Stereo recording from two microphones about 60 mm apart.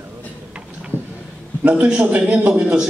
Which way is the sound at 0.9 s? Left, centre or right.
Left.